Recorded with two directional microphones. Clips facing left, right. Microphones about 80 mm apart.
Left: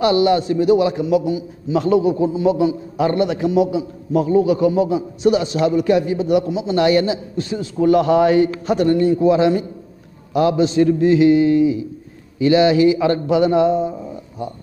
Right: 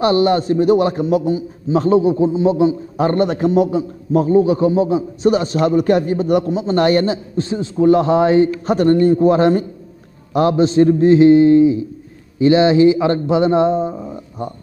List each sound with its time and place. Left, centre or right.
0.0 s a man's voice: right
8.7 s a man's voice: right